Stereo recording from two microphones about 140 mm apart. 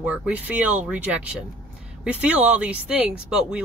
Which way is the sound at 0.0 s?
10° right (ahead or behind).